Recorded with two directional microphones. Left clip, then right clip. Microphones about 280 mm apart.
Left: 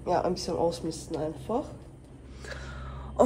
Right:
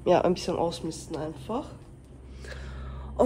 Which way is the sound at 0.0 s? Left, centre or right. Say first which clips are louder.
Right 5 dB; right.